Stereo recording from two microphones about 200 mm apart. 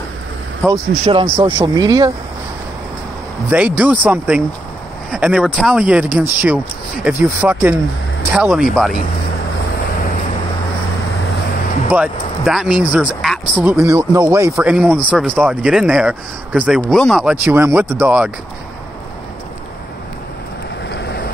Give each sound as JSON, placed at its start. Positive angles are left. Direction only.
{"t": 0.6, "sound": "speech", "side_deg": 5}
{"t": 1.0, "sound": "speech", "side_deg": -30}
{"t": 3.4, "sound": "speech", "side_deg": -10}
{"t": 11.9, "sound": "speech", "side_deg": -5}
{"t": 13.7, "sound": "speech", "side_deg": -15}
{"t": 20.9, "sound": "vehicle", "side_deg": 55}